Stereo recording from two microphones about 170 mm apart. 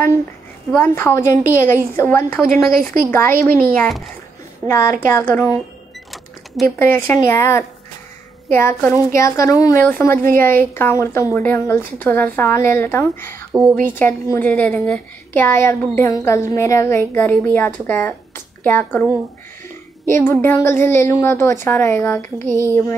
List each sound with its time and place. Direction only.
0.7 s a woman's voice: 10° left (ahead or behind)
1.3 s a woman's voice: 50° right (ahead or behind)
2.0 s a woman's voice: 10° left (ahead or behind)
2.7 s a woman's voice: 55° right (ahead or behind)
3.1 s a woman's voice: 10° left (ahead or behind)
4.6 s a woman's voice: 15° left (ahead or behind)
6.8 s a woman's voice: 15° left (ahead or behind)
13.5 s a woman's voice: 20° right (ahead or behind)
13.8 s a woman's voice: 10° left (ahead or behind)
20.1 s a woman's voice: 15° left (ahead or behind)